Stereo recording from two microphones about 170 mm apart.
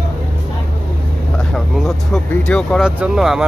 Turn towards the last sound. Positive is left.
turn(degrees=-5)  # may be behind; listen again after turning